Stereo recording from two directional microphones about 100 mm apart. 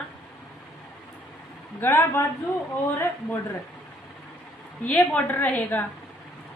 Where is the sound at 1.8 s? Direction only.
25° left (ahead or behind).